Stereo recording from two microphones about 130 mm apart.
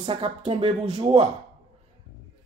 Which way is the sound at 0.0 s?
40° right (ahead or behind).